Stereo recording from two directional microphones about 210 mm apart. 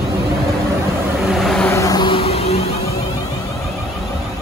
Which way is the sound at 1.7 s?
15° left (ahead or behind).